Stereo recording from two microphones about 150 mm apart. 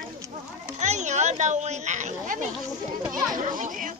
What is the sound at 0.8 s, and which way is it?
Speech, 50° right (ahead or behind).